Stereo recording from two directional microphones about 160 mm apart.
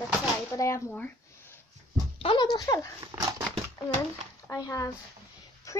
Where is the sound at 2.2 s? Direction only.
30° left (ahead or behind).